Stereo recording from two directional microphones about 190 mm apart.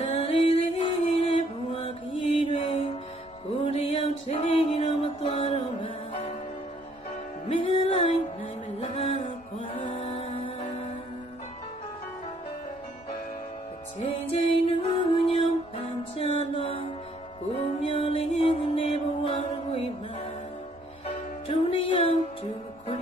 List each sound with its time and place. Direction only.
0.0 s music: 30° left (ahead or behind)
7.4 s music: 30° left (ahead or behind)
9.8 s music: 30° left (ahead or behind)
14.0 s music: 30° left (ahead or behind)
21.5 s music: 30° left (ahead or behind)